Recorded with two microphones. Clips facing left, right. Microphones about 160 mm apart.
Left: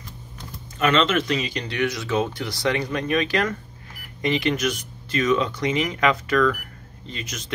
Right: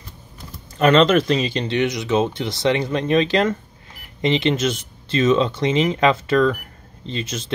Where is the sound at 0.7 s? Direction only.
40° right (ahead or behind).